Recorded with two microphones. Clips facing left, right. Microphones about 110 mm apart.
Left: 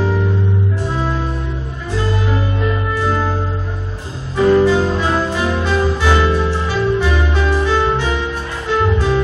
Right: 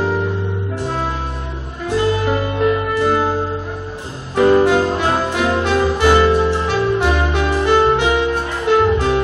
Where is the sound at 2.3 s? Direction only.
55° right (ahead or behind).